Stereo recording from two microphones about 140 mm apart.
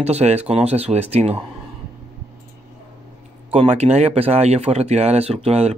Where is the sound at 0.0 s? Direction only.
50° right (ahead or behind).